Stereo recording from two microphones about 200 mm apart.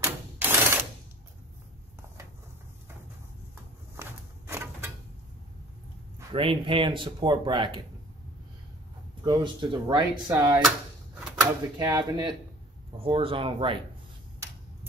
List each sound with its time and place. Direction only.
0.0 s typewriter: 10° right (ahead or behind)
3.9 s a sound: 15° right (ahead or behind)
6.3 s speech: 25° right (ahead or behind)
9.2 s speech: 25° right (ahead or behind)
11.8 s speech: 20° right (ahead or behind)